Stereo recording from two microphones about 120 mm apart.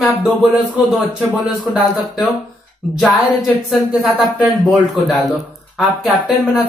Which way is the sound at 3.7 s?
Centre (ahead or behind).